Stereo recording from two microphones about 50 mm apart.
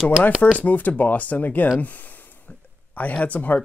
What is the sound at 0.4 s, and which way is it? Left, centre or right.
Speech, left.